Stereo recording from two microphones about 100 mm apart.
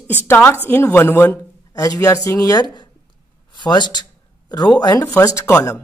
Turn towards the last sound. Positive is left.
turn(degrees=30)  # may be behind; listen again after turning